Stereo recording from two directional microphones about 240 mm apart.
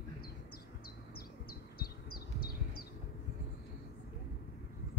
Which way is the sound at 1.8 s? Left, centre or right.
Left.